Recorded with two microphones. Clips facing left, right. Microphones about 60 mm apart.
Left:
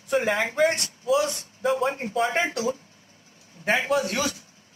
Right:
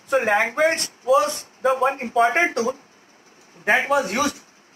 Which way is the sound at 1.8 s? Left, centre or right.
Right.